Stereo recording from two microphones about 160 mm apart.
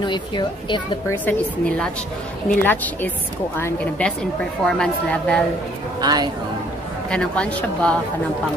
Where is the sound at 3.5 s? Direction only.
10° left (ahead or behind).